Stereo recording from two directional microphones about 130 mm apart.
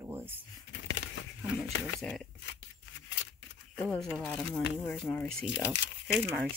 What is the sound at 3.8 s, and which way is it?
Speech, 5° left (ahead or behind).